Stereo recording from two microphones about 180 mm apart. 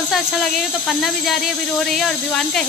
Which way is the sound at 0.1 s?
Centre (ahead or behind).